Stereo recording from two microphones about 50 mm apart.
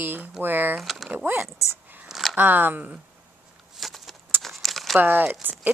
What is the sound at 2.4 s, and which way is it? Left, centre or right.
Speech, right.